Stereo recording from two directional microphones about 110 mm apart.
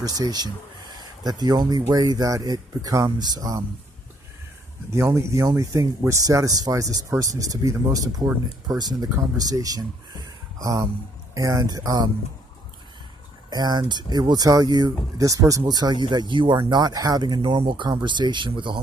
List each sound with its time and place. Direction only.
0.0 s speech: 35° right (ahead or behind)
4.9 s speech: 25° right (ahead or behind)
13.5 s speech: 40° right (ahead or behind)